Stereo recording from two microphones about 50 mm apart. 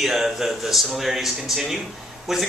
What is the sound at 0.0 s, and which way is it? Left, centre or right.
Speech, centre.